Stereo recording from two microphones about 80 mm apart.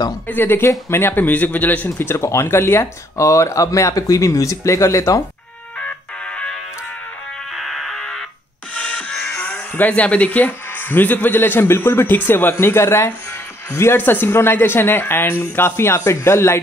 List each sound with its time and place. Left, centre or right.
0.3 s speech: left
5.8 s fire alarm: centre
7.5 s fire alarm: centre
8.7 s speech: centre; by 16.6 s left